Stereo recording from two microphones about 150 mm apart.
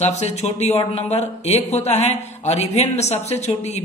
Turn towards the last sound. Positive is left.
turn(degrees=45)  # may be behind; listen again after turning